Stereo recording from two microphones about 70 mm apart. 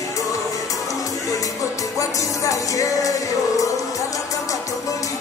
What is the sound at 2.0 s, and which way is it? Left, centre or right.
Music, left.